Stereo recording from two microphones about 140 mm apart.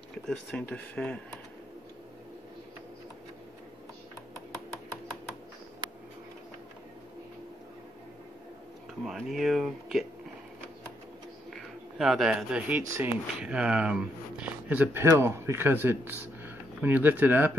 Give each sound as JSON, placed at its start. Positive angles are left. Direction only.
{"t": 0.3, "sound": "speech", "side_deg": 5}
{"t": 9.0, "sound": "speech", "side_deg": 0}
{"t": 11.5, "sound": "speech", "side_deg": 0}
{"t": 12.8, "sound": "speech", "side_deg": -20}
{"t": 13.4, "sound": "speech", "side_deg": -10}